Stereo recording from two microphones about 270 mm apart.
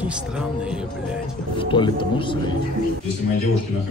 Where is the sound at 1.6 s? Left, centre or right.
Centre.